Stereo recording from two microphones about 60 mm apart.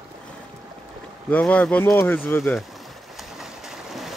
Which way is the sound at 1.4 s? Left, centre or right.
Left.